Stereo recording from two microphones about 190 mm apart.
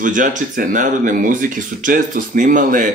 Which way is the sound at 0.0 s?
45° right (ahead or behind).